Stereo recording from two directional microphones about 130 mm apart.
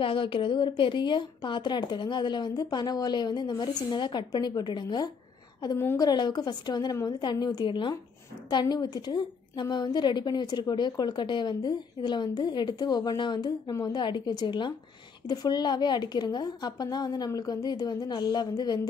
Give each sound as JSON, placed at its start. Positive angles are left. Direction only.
{"t": 0.0, "sound": "a woman's voice", "side_deg": 40}